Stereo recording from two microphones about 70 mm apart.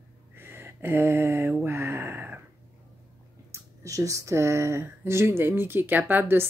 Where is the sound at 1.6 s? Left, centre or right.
Right.